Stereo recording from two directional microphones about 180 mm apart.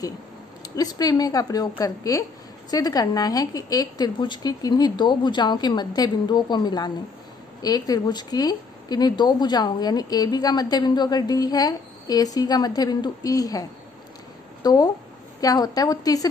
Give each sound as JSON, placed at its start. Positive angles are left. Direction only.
{"t": 0.6, "sound": "a woman's voice", "side_deg": 20}